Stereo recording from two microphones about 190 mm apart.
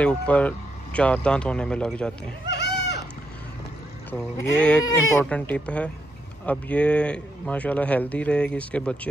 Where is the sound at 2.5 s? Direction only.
60° left (ahead or behind).